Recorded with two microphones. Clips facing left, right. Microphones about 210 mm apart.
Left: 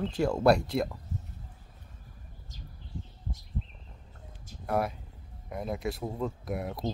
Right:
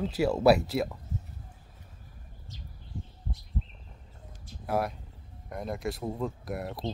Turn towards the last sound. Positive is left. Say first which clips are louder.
# left 1 dB
turn(degrees=0)  # may be behind; listen again after turning